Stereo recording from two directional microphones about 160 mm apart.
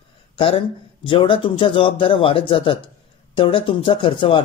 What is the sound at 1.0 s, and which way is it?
Speech, 35° left (ahead or behind).